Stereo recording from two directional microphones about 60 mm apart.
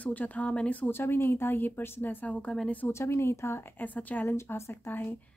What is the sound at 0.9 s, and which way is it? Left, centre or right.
Speech, left.